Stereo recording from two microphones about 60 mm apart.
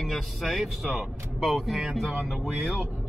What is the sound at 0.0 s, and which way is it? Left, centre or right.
Speech, centre.